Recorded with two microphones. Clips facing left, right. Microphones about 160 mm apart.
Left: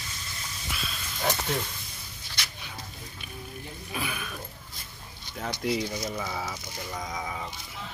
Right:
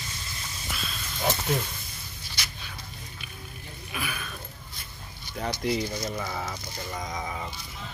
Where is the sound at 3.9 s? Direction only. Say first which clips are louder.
Left 1 dB; 25° left (ahead or behind).